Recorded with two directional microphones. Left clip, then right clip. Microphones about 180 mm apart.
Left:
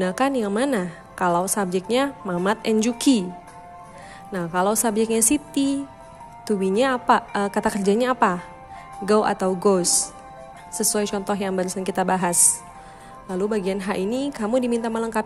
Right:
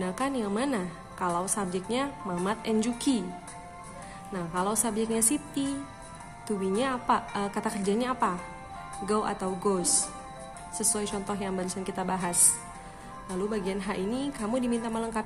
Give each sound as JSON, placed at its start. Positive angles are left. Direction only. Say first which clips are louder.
{"t": 0.0, "sound": "a woman's voice", "louder": "left 9 dB", "side_deg": 40}
{"t": 4.3, "sound": "a woman's voice", "louder": "left 8 dB", "side_deg": 40}